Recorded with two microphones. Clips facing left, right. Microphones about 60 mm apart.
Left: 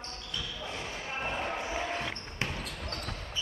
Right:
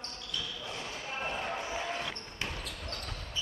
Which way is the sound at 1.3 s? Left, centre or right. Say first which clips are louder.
Left 2 dB; centre.